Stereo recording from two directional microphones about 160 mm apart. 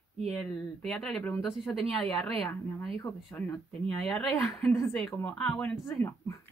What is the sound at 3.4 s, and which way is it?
Speech, 10° left (ahead or behind).